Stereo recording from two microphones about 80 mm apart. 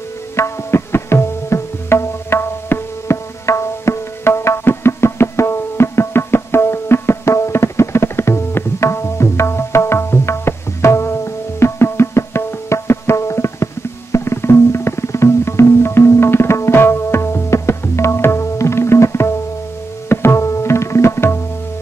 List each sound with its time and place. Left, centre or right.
0.4 s tabla: left
14.1 s music: left
20.1 s tabla: left